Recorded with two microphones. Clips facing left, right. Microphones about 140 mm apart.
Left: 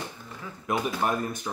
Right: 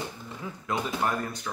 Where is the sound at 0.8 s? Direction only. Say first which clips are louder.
Left 1 dB; 15° left (ahead or behind).